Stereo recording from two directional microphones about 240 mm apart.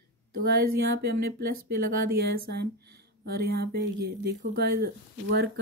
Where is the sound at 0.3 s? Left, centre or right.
Right.